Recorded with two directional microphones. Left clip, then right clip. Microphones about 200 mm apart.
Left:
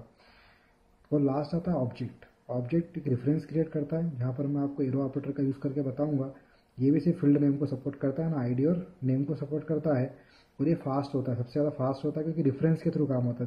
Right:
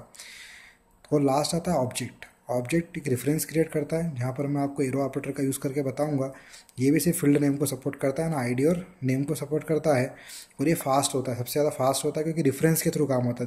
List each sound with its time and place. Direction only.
1.1 s speech: centre (ahead or behind)
13.0 s speech: 20° right (ahead or behind)